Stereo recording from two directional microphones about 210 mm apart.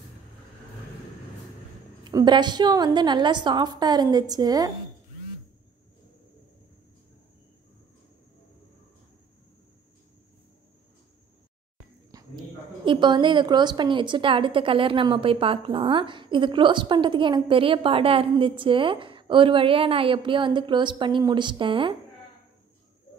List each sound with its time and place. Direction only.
2.0 s a woman's voice: 20° right (ahead or behind)
12.1 s clip-clop: 15° right (ahead or behind)
12.8 s a woman's voice: 20° right (ahead or behind)